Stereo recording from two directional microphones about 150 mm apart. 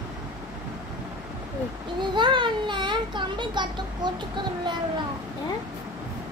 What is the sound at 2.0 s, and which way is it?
A child's voice, 30° right (ahead or behind).